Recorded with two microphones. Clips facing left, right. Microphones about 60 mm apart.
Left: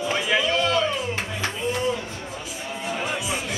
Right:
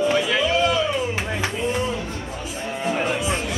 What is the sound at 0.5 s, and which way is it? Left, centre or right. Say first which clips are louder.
Music: right 4 dB; centre.